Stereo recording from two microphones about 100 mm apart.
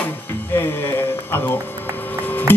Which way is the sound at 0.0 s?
20° left (ahead or behind).